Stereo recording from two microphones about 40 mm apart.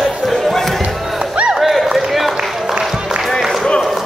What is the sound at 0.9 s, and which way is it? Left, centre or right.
Crowd, centre.